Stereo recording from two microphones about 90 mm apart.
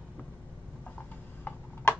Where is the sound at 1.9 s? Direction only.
25° left (ahead or behind).